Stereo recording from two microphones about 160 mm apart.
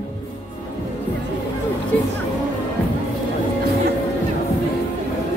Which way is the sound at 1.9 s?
10° left (ahead or behind).